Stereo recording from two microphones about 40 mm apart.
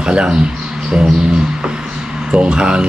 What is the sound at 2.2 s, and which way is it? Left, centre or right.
Speech, right.